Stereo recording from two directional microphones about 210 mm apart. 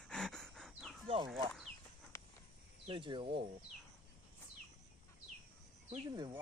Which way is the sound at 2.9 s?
25° right (ahead or behind).